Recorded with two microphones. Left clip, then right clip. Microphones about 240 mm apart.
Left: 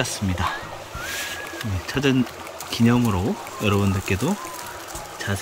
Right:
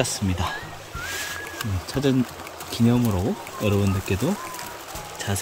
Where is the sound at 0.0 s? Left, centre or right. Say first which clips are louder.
Left 1 dB; centre.